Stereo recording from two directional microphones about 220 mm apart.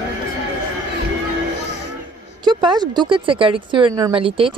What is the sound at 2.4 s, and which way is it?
Speech, 20° right (ahead or behind).